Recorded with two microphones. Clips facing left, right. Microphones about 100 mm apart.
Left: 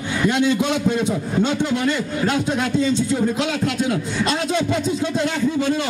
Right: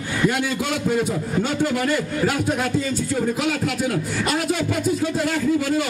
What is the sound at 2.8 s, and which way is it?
A man's voice, 20° left (ahead or behind).